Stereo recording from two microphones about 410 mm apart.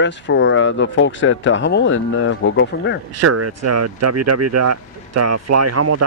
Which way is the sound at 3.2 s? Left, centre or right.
Right.